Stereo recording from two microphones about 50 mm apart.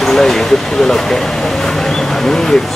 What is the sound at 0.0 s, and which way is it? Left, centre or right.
Speech, centre.